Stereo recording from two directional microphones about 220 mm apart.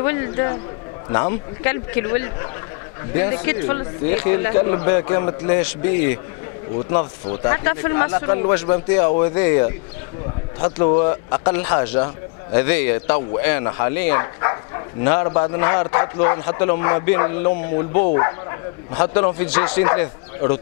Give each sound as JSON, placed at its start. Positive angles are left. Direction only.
{"t": 0.0, "sound": "speech", "side_deg": 15}
{"t": 7.4, "sound": "speech", "side_deg": 15}